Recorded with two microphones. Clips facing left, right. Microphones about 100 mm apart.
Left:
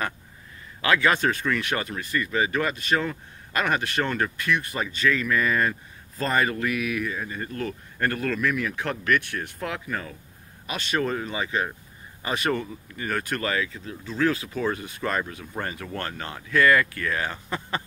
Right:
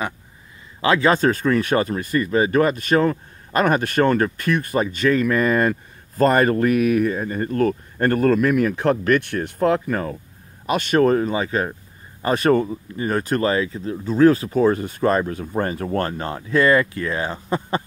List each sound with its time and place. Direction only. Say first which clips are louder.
0.7 s speech: right 5 dB; 30° right (ahead or behind)